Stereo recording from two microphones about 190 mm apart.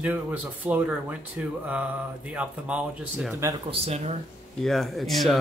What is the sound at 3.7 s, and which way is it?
Speech, 35° right (ahead or behind).